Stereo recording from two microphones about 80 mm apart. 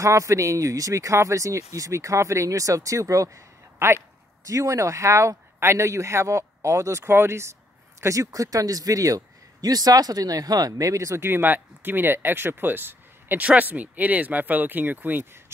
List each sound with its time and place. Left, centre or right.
0.0 s speech: right